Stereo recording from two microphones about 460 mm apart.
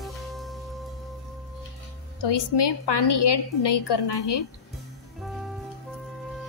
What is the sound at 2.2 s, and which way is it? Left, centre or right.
Speech, left.